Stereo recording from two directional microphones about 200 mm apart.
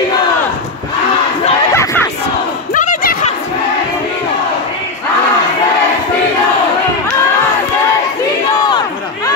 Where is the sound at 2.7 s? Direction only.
40° left (ahead or behind).